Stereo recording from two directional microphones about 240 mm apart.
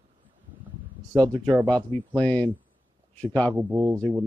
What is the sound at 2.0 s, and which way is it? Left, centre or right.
Speech, centre.